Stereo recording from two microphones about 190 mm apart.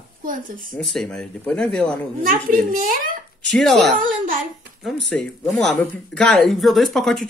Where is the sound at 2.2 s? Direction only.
45° right (ahead or behind).